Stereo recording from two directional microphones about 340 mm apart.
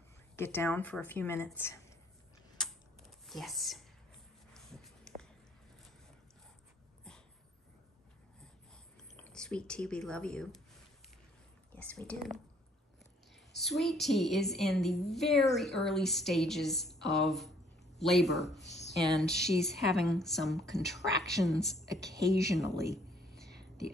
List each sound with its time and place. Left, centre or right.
0.4 s speech: centre
3.3 s speech: centre
4.6 s a sound: centre
9.1 s speech: centre
11.7 s a woman's voice: centre
13.6 s a woman's voice: centre